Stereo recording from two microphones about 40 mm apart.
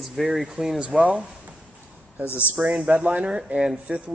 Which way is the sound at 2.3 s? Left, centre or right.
Left.